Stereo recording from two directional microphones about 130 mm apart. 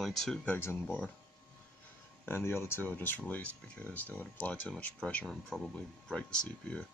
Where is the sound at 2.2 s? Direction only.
20° left (ahead or behind).